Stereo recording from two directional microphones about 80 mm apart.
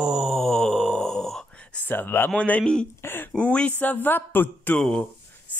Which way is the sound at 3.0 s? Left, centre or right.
Left.